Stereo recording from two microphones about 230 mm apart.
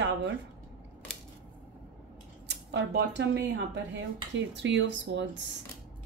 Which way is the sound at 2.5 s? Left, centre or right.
Right.